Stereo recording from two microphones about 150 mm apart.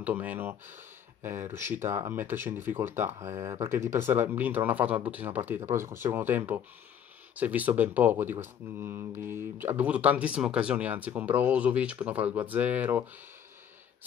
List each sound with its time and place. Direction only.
0.0 s speech: 10° right (ahead or behind)